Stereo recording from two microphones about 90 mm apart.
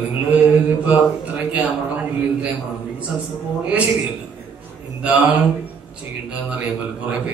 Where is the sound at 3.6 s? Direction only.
15° right (ahead or behind).